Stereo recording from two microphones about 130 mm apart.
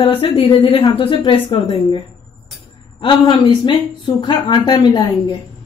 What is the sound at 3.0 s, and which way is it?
Speech, 40° left (ahead or behind).